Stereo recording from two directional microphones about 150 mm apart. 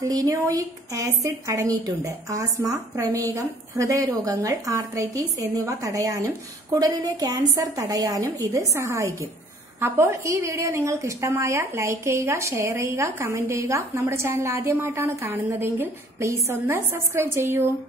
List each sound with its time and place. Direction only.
0.1 s a woman's voice: 25° right (ahead or behind)